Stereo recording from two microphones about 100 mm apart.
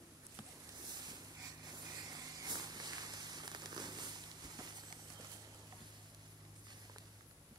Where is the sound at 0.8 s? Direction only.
45° right (ahead or behind).